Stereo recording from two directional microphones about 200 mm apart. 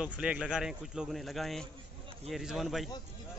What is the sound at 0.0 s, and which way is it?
Speech, 5° right (ahead or behind).